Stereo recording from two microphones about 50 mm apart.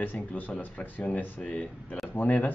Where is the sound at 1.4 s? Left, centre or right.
Left.